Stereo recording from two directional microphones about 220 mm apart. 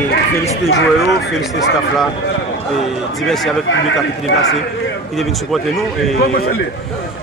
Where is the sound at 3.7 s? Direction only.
60° left (ahead or behind).